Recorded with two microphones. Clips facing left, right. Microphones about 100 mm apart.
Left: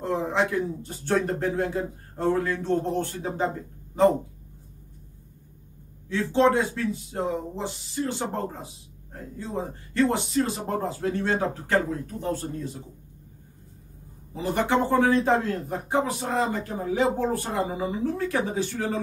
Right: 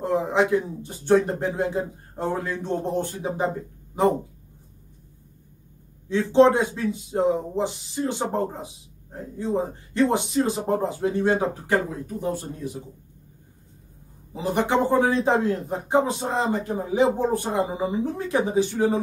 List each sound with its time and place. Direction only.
0.0 s speech: 15° right (ahead or behind)
6.0 s speech: 20° right (ahead or behind)
14.3 s speech: 15° right (ahead or behind)